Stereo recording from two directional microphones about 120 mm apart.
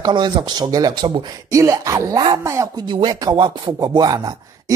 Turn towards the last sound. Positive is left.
turn(degrees=-35)  # may be behind; listen again after turning